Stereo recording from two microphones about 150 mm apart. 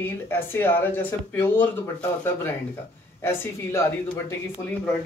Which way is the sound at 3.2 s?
15° left (ahead or behind).